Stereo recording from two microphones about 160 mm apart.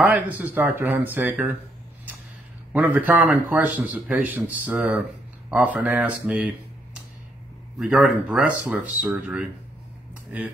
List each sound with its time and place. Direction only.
0.0 s a man's voice: 10° right (ahead or behind)
2.7 s a man's voice: 10° right (ahead or behind)